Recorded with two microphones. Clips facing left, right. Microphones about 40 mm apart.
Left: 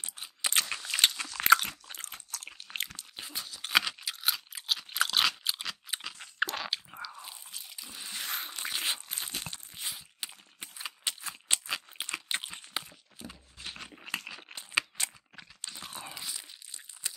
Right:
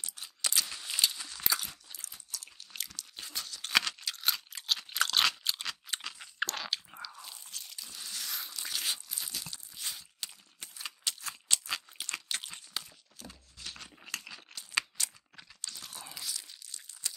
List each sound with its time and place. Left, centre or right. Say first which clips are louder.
0.0 s a sound: left 2 dB; left
0.5 s scissors: left 4 dB; left
0.9 s biting: left 5 dB; left
1.4 s crunch: left 13 dB; left
3.0 s crunch: left 1 dB; centre
6.2 s chewing: left 5 dB; centre
7.2 s biting: left 1 dB; centre; by 8.6 s left
8.6 s a sound: left 2 dB; left
9.1 s crunch: left 3 dB; left
9.8 s a sound: even; centre
12.3 s crunch: left 4 dB; left
14.1 s a sound: left 4 dB; left
15.6 s crunch: left 3 dB; left